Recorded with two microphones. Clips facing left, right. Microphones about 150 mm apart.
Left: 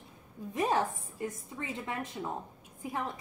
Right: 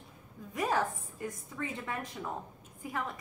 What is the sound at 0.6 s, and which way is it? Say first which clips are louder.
A woman's voice: left 2 dB; 25° left (ahead or behind).